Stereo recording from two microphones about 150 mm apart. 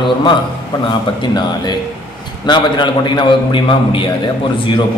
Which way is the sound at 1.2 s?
30° left (ahead or behind).